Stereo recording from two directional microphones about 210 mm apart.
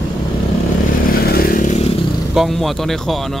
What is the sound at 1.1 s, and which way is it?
Motorcycle, 45° left (ahead or behind).